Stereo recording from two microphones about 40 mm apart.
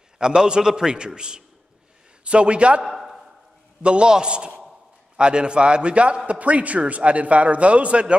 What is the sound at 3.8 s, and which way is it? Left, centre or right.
A man's voice, right.